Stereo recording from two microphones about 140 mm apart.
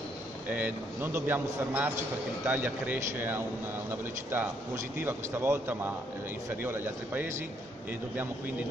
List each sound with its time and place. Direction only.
0.5 s a man's voice: 10° right (ahead or behind)